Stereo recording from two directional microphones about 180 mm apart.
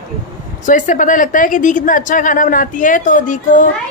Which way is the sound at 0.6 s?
45° left (ahead or behind).